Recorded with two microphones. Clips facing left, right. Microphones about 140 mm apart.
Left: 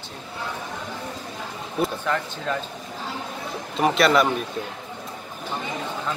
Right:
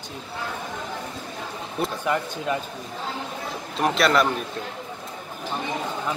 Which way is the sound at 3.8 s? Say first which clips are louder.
Left 2 dB; centre (ahead or behind).